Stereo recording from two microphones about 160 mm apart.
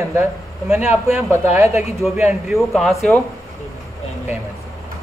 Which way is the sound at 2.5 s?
Centre (ahead or behind).